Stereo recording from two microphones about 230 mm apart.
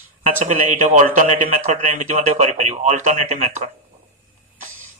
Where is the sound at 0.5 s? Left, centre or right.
Right.